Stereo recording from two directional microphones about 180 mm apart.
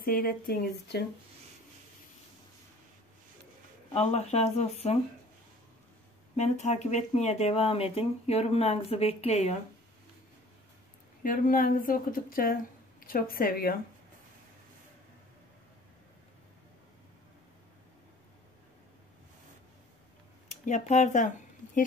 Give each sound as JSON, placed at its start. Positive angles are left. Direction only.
{"t": 0.0, "sound": "speech", "side_deg": 55}
{"t": 3.9, "sound": "speech", "side_deg": 35}
{"t": 6.3, "sound": "speech", "side_deg": 40}
{"t": 11.2, "sound": "speech", "side_deg": 50}
{"t": 20.4, "sound": "speech", "side_deg": 40}